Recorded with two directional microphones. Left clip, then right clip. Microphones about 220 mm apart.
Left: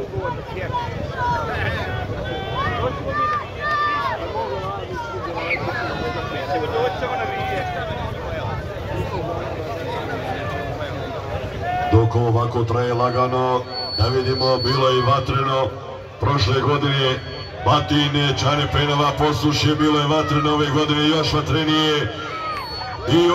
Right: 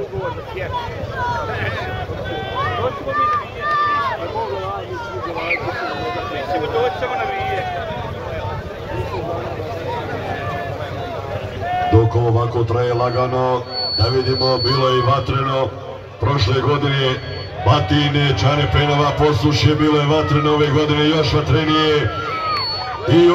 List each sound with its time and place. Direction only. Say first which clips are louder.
6.8 s speech: right 2 dB; 35° right (ahead or behind)
11.9 s a man's voice: right 2 dB; 30° left (ahead or behind)
23.0 s speech: right 4 dB; 30° left (ahead or behind)